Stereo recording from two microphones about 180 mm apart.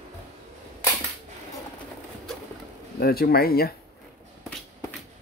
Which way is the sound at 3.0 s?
60° left (ahead or behind).